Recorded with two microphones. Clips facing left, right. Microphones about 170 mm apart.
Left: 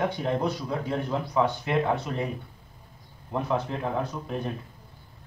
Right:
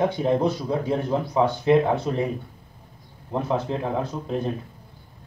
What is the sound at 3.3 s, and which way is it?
Speech, 25° right (ahead or behind).